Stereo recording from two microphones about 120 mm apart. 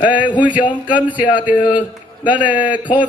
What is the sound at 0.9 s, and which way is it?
A man's voice, 10° right (ahead or behind).